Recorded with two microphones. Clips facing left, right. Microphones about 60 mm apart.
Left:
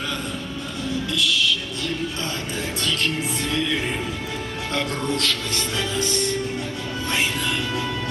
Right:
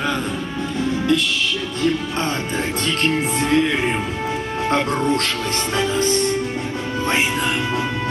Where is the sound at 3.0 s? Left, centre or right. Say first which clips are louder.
Right 6 dB; right.